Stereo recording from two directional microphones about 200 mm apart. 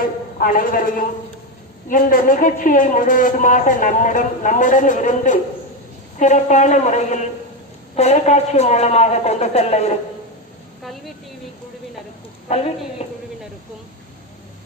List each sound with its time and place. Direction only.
0.4 s a woman's voice: 45° left (ahead or behind)
12.5 s a woman's voice: 30° left (ahead or behind)
13.0 s a sound: 30° left (ahead or behind)